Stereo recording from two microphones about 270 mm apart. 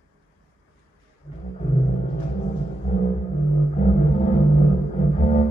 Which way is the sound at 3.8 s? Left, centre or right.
Left.